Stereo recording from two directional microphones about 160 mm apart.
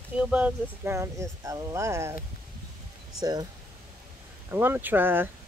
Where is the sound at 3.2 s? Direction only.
25° right (ahead or behind).